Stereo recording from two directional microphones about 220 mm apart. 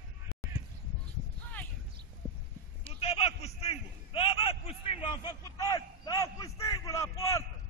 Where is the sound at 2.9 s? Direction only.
25° left (ahead or behind).